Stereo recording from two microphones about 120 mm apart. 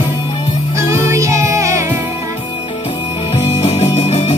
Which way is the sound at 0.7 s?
25° right (ahead or behind).